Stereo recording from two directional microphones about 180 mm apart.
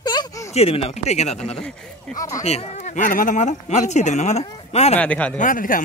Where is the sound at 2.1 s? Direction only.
20° left (ahead or behind).